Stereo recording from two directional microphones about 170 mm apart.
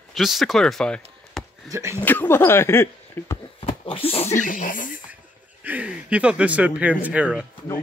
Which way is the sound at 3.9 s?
35° left (ahead or behind).